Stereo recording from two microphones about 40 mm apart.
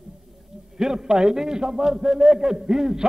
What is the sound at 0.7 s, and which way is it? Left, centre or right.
A man's voice, centre.